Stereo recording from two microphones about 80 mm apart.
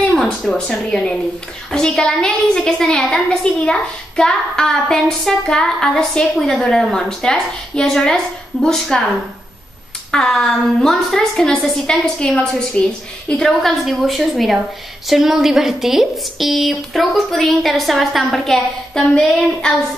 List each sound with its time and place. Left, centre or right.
0.1 s a woman's voice: centre
10.1 s a woman's voice: centre